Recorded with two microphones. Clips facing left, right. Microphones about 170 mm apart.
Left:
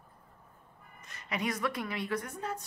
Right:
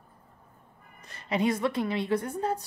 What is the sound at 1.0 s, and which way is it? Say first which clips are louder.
A woman's voice: right 8 dB; 30° right (ahead or behind).